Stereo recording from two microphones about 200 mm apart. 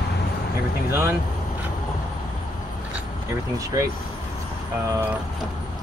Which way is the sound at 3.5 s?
15° right (ahead or behind).